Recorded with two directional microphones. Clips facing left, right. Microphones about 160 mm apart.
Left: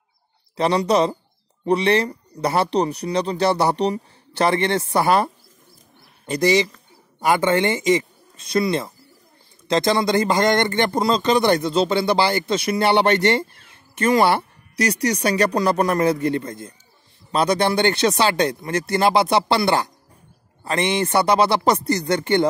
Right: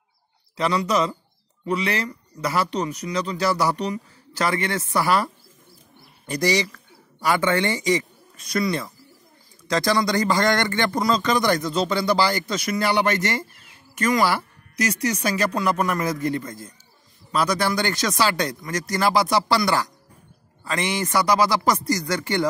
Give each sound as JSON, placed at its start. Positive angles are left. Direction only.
{"t": 0.6, "sound": "speech", "side_deg": 30}